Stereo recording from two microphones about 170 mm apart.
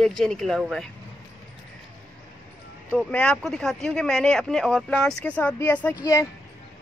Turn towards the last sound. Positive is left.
turn(degrees=20)  # may be behind; listen again after turning